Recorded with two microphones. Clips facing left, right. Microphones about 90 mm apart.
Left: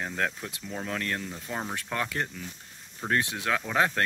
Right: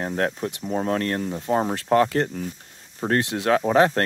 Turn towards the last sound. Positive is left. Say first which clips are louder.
# right 9 dB
turn(degrees=-45)  # may be behind; listen again after turning